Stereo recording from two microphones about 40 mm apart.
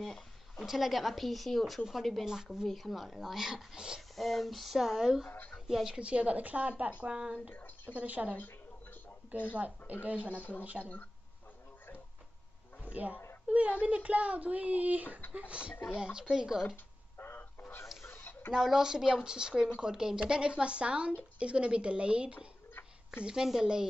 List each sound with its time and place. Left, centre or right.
0.0 s a sound: centre
0.7 s a woman's voice: centre
2.2 s speech: centre
2.7 s a woman's voice: centre
4.1 s a woman's voice: centre
5.9 s speech: right
7.0 s speech: right
7.5 s a sound: left
7.9 s speech: right
12.9 s speech: right
15.3 s speech: right
18.0 s a sound: left
18.5 s speech: centre